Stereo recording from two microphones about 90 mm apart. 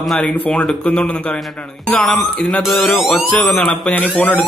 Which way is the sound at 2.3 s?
15° left (ahead or behind).